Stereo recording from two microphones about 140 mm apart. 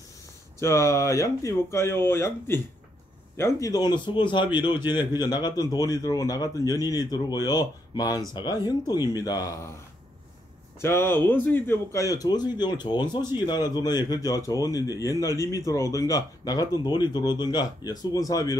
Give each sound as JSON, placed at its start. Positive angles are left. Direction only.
{"t": 0.6, "sound": "a man's voice", "side_deg": 20}
{"t": 10.8, "sound": "a man's voice", "side_deg": 20}